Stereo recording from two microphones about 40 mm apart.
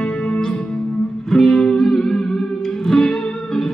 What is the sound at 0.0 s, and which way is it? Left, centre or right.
Music, left.